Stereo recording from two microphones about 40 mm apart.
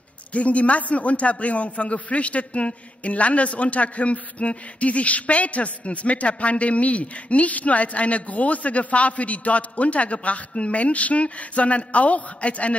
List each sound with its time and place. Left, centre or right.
0.3 s a man's voice: left